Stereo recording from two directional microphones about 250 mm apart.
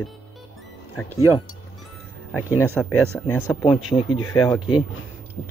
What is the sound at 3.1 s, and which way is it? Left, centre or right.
Speech, centre.